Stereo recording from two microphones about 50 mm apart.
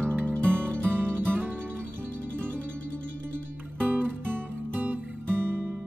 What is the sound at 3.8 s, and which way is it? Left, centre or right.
Music, right.